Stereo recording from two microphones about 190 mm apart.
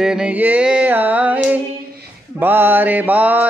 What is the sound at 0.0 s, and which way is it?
Mantra, 5° right (ahead or behind).